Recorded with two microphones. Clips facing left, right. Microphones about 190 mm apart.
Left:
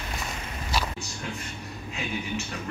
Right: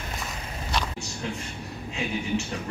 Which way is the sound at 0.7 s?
5° left (ahead or behind).